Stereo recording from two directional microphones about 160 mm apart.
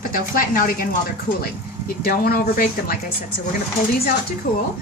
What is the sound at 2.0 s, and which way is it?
Speech, 70° left (ahead or behind).